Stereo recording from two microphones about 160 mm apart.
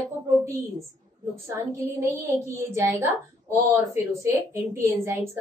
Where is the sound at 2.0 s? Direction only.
20° right (ahead or behind).